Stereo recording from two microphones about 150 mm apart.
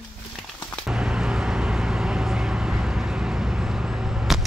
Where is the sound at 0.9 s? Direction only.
5° right (ahead or behind).